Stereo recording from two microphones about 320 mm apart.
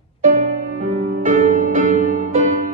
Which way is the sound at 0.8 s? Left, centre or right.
Right.